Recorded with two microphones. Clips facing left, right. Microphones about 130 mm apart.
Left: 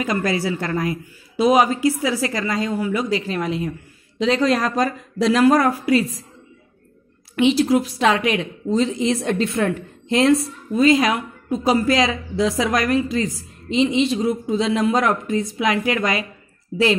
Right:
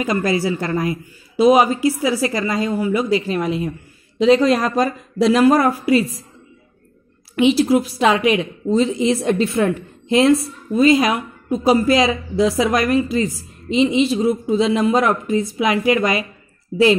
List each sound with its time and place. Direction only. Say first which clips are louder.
0.0 s a woman's voice: right 2 dB; 5° right (ahead or behind)
0.6 s a woman's voice: right 2 dB; 15° right (ahead or behind)
1.3 s a woman's voice: right 3 dB; 5° right (ahead or behind)
7.3 s a woman's voice: right 2 dB; 5° right (ahead or behind)
16.7 s speech: right 4 dB; 55° right (ahead or behind)